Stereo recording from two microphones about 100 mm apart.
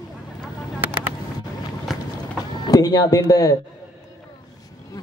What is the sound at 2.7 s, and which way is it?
Speech, 40° left (ahead or behind).